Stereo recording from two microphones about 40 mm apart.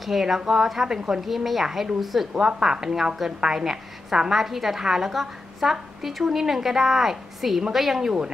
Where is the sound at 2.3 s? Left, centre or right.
Centre.